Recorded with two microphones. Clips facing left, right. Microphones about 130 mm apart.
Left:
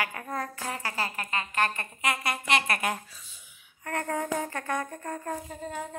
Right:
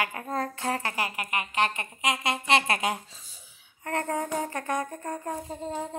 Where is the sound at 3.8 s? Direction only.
25° right (ahead or behind).